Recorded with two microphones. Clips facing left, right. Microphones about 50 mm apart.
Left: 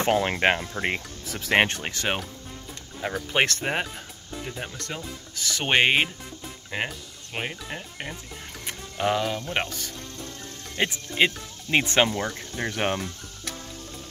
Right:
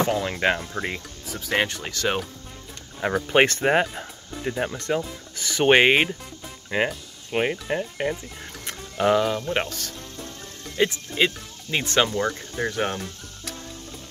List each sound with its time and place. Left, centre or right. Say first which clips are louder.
0.1 s speech: left 2 dB; left
0.4 s speech: even; left
0.8 s speech: left 3 dB; left
1.8 s speech: right 2 dB; left
3.0 s speech: right 5 dB; right
5.8 s speech: right 3 dB; centre
8.9 s speech: right 5 dB; centre
10.8 s speech: right 1 dB; left
12.7 s speech: left 3 dB; left